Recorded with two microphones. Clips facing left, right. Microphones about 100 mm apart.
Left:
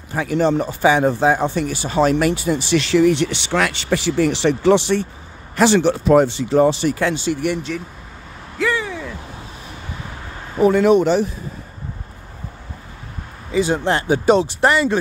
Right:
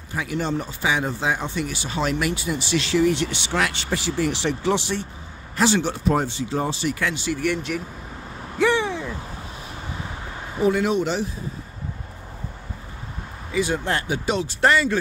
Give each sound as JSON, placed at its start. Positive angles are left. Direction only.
{"t": 0.1, "sound": "speech", "side_deg": 45}
{"t": 2.8, "sound": "speech", "side_deg": 70}
{"t": 6.9, "sound": "speech", "side_deg": 35}
{"t": 7.7, "sound": "speech", "side_deg": -10}
{"t": 8.5, "sound": "a sound", "side_deg": -20}
{"t": 10.6, "sound": "speech", "side_deg": 55}
{"t": 13.5, "sound": "speech", "side_deg": 25}
{"t": 14.5, "sound": "speech", "side_deg": 15}